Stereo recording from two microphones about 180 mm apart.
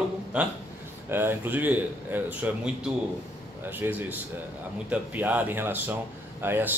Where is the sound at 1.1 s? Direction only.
10° right (ahead or behind).